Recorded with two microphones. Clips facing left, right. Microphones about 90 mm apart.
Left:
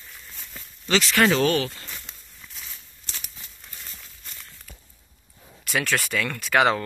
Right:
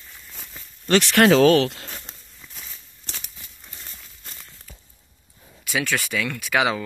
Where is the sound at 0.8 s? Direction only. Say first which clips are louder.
Right 4 dB; 55° right (ahead or behind); by 1.9 s 85° right.